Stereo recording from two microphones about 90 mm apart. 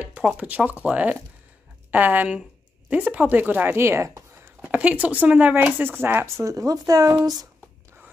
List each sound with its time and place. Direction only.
0.0 s a sound: 15° right (ahead or behind)
0.4 s a woman's voice: 15° right (ahead or behind); by 4.2 s 30° right (ahead or behind)
4.6 s a woman's voice: 15° right (ahead or behind)
6.4 s speech: 40° right (ahead or behind)